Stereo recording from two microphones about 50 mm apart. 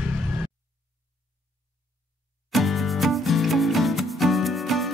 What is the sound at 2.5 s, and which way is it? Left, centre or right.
Music, centre.